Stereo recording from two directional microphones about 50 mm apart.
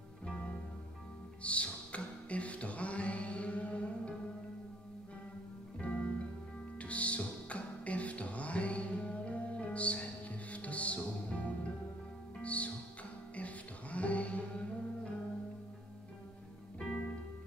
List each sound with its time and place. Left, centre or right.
1.4 s music: left
5.8 s music: left
16.8 s music: centre